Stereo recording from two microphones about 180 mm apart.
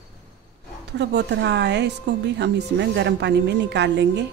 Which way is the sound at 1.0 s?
75° right (ahead or behind).